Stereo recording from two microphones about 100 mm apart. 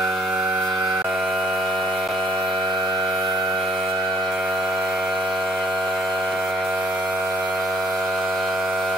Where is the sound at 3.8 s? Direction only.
45° right (ahead or behind).